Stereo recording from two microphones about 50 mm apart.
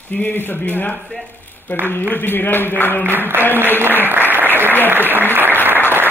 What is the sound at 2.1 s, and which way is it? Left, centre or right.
Speech, left.